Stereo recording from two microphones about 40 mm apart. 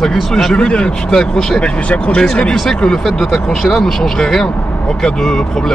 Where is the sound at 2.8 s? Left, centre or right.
Centre.